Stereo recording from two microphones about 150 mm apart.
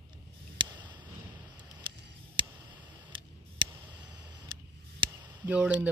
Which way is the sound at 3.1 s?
30° right (ahead or behind).